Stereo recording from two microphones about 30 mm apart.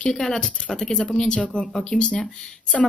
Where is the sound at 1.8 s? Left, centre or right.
Left.